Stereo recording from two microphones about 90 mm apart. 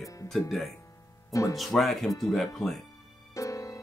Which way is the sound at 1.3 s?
35° left (ahead or behind).